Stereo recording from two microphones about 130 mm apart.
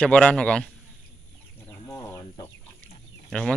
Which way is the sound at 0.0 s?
10° left (ahead or behind).